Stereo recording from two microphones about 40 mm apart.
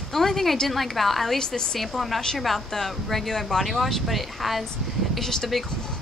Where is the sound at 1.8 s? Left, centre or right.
Centre.